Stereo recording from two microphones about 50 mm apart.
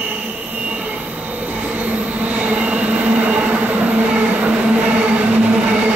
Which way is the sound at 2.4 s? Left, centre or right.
Right.